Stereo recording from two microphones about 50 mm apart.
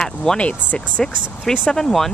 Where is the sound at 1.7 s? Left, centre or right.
Centre.